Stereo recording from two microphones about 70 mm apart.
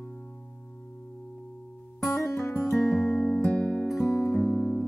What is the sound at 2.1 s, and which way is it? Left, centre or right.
Music, left.